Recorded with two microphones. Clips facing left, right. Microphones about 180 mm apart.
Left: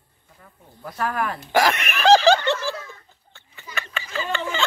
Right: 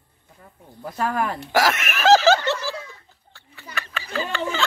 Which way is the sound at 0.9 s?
25° right (ahead or behind).